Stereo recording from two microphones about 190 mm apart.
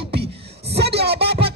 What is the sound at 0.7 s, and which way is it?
Speech, 60° right (ahead or behind).